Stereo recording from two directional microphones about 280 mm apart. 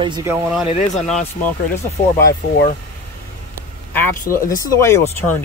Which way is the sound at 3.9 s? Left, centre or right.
Centre.